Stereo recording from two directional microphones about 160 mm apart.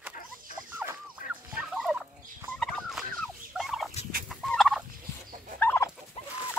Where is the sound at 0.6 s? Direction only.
10° right (ahead or behind).